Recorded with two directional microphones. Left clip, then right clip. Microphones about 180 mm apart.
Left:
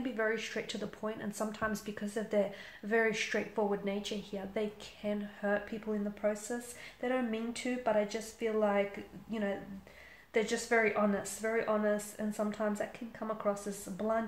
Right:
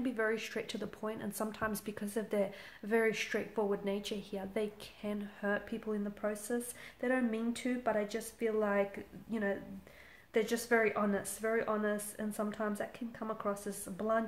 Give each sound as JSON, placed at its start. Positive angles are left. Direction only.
{"t": 0.0, "sound": "a woman's voice", "side_deg": -35}